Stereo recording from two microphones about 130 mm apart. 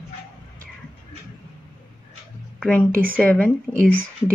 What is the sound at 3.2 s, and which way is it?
Speech, 10° left (ahead or behind).